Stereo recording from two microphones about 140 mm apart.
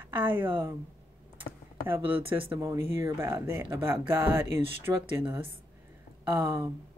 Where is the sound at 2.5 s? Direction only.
20° right (ahead or behind).